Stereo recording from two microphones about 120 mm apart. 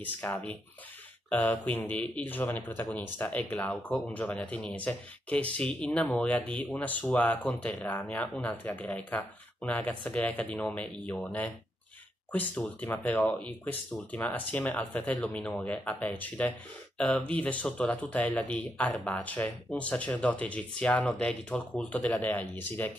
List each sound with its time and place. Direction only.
0.0 s speech: 15° left (ahead or behind)
1.8 s speech: 10° left (ahead or behind)